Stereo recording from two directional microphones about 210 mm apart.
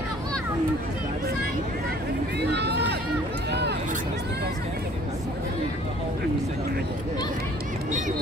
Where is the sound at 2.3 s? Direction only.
50° right (ahead or behind).